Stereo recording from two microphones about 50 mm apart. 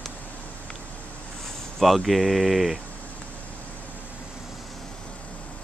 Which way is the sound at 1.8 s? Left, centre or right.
Centre.